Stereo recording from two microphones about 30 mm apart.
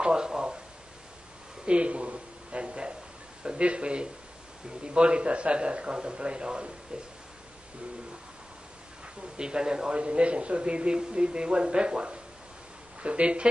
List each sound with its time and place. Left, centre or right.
0.0 s speech: right
1.7 s a man's voice: right
9.4 s speech: right
9.9 s a man's voice: right